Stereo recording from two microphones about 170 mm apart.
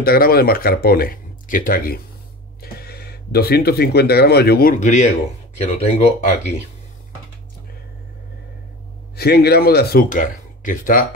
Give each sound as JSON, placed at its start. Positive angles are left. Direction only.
{"t": 0.0, "sound": "speech", "side_deg": 65}
{"t": 2.6, "sound": "speech", "side_deg": 65}
{"t": 4.7, "sound": "speech", "side_deg": 45}
{"t": 9.1, "sound": "speech", "side_deg": 65}